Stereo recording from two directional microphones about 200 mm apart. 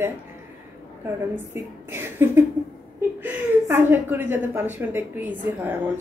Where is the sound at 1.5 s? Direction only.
10° right (ahead or behind).